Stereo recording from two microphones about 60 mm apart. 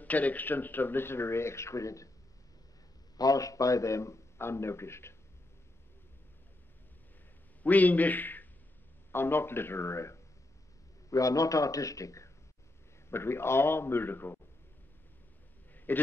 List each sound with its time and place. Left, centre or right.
0.0 s speech: left
3.2 s a man's voice: left
7.6 s a man's voice: left
11.1 s a man's voice: left
13.1 s speech: left
15.7 s a sound: left